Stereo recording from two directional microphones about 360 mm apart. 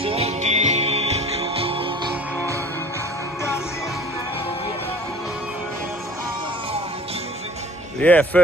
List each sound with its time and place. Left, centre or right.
0.0 s music: centre
8.0 s speech: centre